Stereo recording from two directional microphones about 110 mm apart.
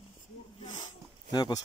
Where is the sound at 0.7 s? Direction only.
40° left (ahead or behind).